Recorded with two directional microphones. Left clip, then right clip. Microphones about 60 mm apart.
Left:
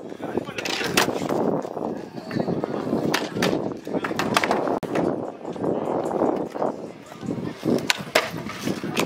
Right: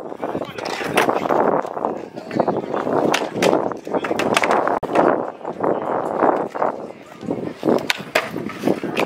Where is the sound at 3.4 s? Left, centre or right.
Centre.